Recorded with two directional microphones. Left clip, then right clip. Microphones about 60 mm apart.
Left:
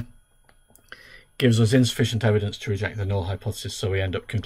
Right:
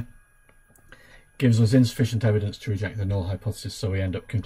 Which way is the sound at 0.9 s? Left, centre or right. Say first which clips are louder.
Left 6 dB; left.